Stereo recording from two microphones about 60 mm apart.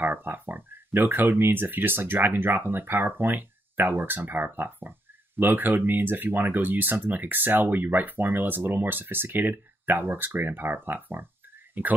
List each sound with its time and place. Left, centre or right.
0.0 s speech: right